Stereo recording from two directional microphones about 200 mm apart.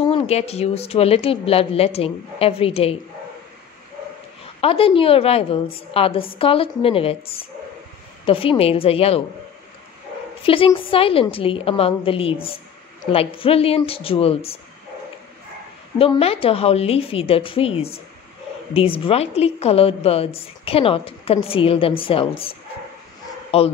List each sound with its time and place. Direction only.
0.1 s a woman's voice: 30° left (ahead or behind)
4.6 s a woman's voice: 30° left (ahead or behind)
10.4 s a woman's voice: 25° left (ahead or behind)
16.0 s a woman's voice: 30° left (ahead or behind)